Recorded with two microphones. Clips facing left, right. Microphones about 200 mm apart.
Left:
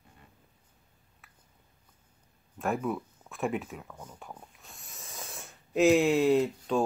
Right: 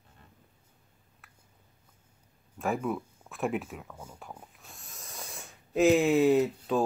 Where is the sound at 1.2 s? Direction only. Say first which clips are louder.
Right 1 dB; centre (ahead or behind).